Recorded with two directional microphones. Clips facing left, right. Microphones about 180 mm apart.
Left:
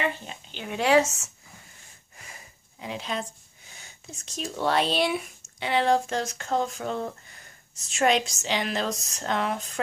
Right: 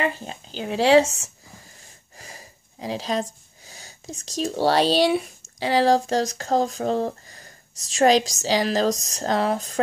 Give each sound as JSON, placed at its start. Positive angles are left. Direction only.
{"t": 0.0, "sound": "speech", "side_deg": -35}
{"t": 2.1, "sound": "sniff", "side_deg": -35}
{"t": 5.6, "sound": "speech", "side_deg": -35}